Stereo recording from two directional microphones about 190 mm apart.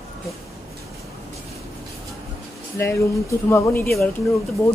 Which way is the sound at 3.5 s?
15° left (ahead or behind).